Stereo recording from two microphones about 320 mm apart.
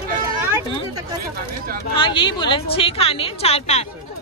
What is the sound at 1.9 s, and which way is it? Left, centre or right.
A woman's voice, centre.